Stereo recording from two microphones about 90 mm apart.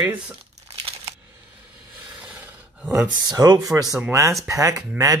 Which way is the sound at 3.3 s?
50° right (ahead or behind).